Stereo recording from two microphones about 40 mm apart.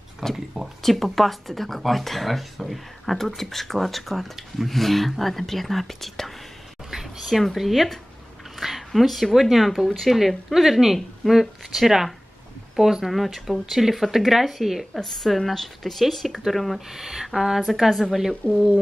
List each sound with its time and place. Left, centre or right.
0.2 s speech: centre
6.9 s a sound: centre
7.2 s speech: centre
15.0 s speech: centre
16.9 s speech: centre
18.4 s speech: left